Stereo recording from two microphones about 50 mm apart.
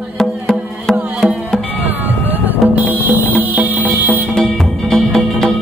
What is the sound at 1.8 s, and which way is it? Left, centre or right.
Music, right.